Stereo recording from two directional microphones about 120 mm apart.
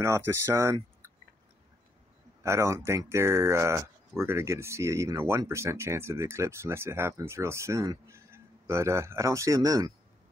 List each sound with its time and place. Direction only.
0.0 s speech: 25° right (ahead or behind)
2.4 s speech: 25° right (ahead or behind)